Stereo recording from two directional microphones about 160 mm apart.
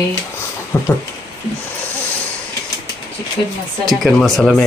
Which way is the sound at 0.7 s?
15° left (ahead or behind).